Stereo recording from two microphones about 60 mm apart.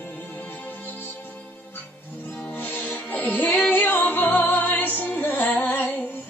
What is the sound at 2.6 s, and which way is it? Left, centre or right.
Music, left.